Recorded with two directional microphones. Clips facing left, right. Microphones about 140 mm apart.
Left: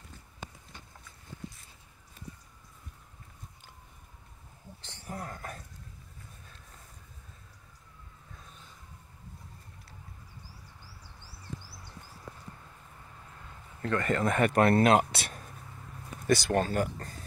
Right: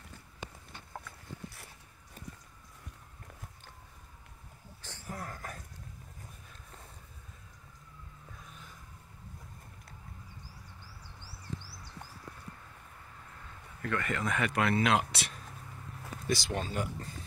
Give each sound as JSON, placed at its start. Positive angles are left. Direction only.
{"t": 0.9, "sound": "boat", "side_deg": -65}
{"t": 4.8, "sound": "a sound", "side_deg": 25}
{"t": 13.8, "sound": "speech", "side_deg": 35}